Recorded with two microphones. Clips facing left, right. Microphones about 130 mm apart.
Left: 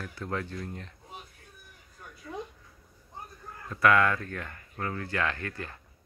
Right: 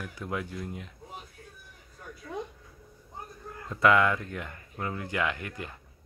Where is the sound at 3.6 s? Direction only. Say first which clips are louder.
Right 1 dB; 20° right (ahead or behind).